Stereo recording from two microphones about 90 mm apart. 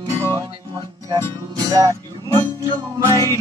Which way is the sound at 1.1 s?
40° right (ahead or behind).